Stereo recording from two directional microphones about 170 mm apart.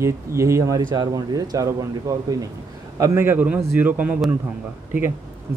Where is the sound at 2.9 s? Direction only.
15° right (ahead or behind).